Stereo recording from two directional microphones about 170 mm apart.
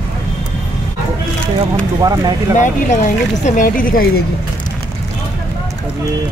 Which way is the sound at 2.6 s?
45° left (ahead or behind).